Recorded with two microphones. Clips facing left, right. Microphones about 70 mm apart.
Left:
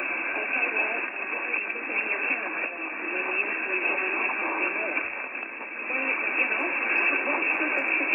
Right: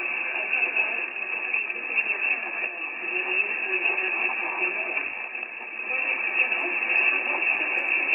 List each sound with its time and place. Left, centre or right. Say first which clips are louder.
0.3 s radio: even; left
2.0 s radio: right 1 dB; left
3.2 s vehicle: right 1 dB; left
4.6 s radio: left 1 dB; left
5.9 s radio: even; left